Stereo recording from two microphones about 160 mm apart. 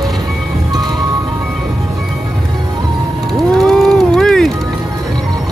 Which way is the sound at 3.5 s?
Centre (ahead or behind).